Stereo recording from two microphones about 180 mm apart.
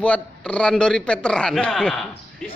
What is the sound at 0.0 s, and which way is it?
A man's voice, 5° left (ahead or behind).